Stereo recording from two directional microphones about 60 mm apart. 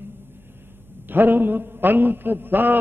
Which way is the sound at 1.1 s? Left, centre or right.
Right.